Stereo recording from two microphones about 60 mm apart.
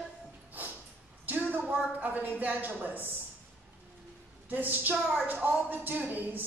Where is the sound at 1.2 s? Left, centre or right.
Right.